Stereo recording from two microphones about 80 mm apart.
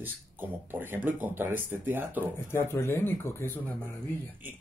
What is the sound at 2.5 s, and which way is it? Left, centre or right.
Speech, left.